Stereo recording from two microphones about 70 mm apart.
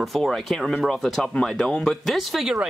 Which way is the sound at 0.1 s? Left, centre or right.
Centre.